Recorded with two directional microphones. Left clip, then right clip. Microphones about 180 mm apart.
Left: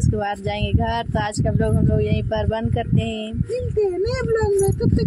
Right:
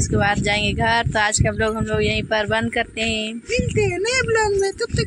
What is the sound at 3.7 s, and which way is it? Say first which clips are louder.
Speech: even; 30° left (ahead or behind).